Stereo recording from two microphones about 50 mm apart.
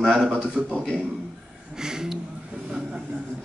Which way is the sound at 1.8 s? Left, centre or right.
Centre.